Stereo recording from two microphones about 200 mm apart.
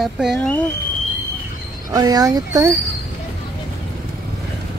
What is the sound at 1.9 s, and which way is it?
Speech, 20° right (ahead or behind).